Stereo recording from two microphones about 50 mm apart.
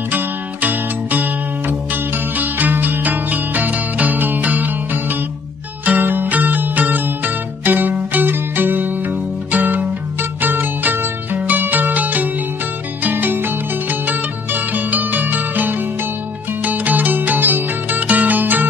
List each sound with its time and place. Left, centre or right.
0.1 s music: right